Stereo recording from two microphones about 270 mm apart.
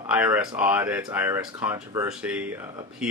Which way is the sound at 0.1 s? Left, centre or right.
Centre.